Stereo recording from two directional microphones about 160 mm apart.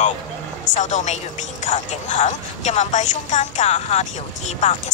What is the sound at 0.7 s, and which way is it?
Speech, 50° left (ahead or behind).